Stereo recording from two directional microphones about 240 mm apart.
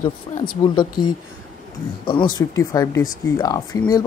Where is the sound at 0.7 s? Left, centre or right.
Centre.